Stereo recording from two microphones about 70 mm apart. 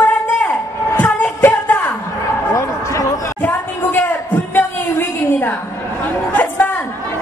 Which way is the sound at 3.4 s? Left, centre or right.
Left.